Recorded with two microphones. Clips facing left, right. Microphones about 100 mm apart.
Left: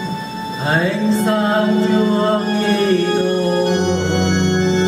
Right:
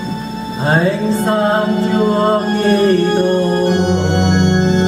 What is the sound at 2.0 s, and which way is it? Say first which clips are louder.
Music: right 2 dB; 40° right (ahead or behind).